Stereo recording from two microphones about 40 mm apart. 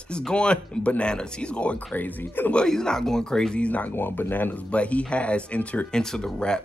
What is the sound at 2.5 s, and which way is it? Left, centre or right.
Speech, centre.